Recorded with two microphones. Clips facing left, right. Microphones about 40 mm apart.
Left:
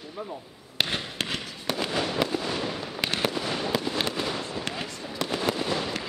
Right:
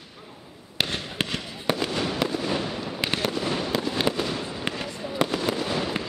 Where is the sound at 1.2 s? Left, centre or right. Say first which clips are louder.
Right 4 dB; centre.